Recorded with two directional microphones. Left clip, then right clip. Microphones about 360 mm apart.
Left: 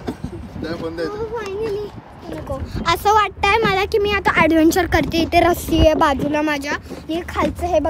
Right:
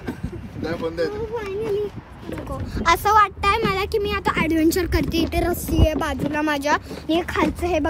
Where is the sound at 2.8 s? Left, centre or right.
Centre.